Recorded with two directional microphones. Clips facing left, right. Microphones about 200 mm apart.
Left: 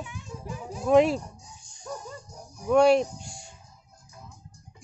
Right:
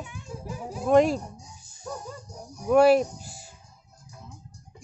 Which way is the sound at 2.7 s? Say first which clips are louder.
Right 1 dB; 5° right (ahead or behind).